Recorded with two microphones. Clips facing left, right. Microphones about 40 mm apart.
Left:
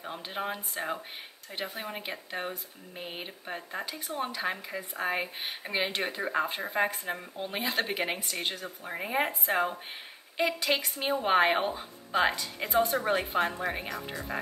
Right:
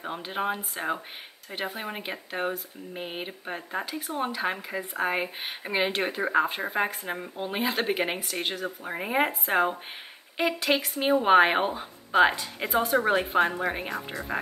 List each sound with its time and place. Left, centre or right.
0.5 s speech: centre